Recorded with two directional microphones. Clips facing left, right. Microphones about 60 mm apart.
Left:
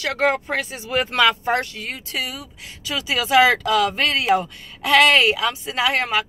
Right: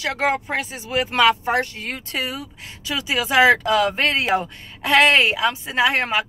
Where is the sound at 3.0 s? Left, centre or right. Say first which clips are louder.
Left 1 dB; right.